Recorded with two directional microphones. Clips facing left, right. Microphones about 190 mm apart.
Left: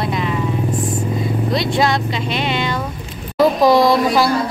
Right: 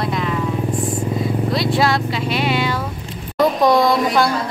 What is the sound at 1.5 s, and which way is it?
A woman's voice, 5° right (ahead or behind).